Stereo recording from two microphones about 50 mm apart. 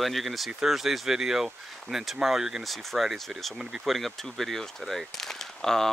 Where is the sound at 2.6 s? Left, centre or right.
Centre.